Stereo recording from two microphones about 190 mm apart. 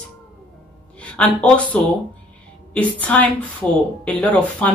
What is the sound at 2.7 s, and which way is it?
Speech, 5° left (ahead or behind).